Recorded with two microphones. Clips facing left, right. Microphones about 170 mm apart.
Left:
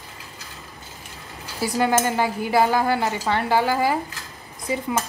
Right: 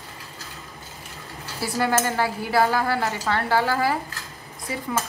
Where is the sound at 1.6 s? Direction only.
15° left (ahead or behind).